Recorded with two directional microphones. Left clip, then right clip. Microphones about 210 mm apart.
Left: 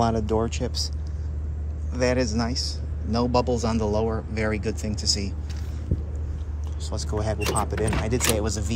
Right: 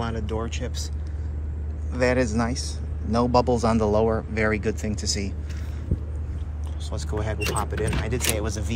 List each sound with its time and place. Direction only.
0.0 s speech: 25° left (ahead or behind)
1.9 s speech: 15° left (ahead or behind)
6.9 s speech: 15° left (ahead or behind)